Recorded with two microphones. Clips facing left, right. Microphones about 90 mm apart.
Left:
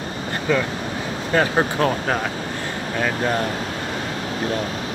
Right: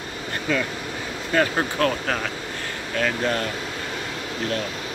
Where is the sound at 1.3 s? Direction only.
25° left (ahead or behind).